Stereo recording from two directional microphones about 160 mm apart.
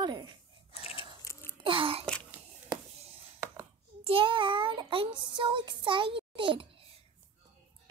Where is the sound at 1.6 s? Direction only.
35° right (ahead or behind).